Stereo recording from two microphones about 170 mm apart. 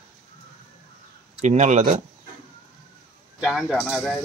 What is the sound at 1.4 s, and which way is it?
Speech, 45° right (ahead or behind).